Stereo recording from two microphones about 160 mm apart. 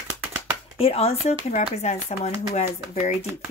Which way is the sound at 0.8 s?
40° left (ahead or behind).